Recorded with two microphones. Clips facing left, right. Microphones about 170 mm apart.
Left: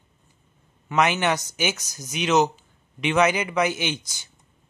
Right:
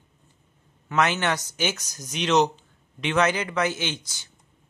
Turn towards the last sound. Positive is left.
turn(degrees=15)  # may be behind; listen again after turning